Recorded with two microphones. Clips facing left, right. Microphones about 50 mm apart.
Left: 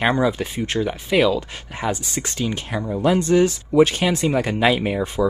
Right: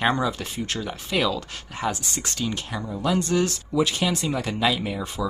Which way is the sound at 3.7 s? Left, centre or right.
Left.